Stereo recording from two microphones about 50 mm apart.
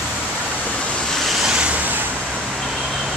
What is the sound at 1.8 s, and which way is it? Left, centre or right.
Vehicle, right.